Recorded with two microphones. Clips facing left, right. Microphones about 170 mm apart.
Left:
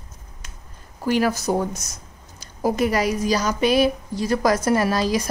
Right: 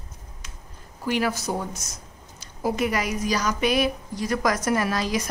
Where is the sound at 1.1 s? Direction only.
40° left (ahead or behind).